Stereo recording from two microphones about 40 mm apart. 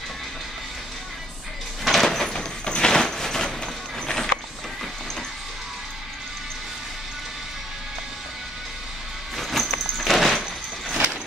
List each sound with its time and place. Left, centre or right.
1.9 s sliding door: centre
2.3 s a sound: left
9.4 s music: centre